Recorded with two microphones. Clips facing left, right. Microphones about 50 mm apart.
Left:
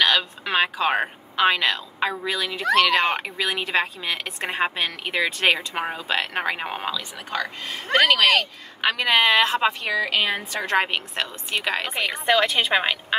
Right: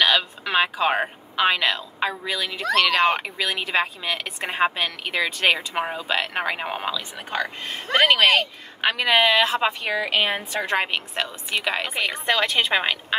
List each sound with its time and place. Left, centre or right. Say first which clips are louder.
0.0 s speech: even; centre
2.8 s speech: right 2 dB; left
3.2 s speech: even; centre
7.2 s speech: right 1 dB; right
8.8 s speech: even; centre
9.7 s speech: left 1 dB; centre
10.8 s speech: left 1 dB; centre